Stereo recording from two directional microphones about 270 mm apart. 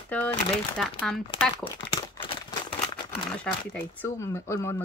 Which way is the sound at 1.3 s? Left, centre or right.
Centre.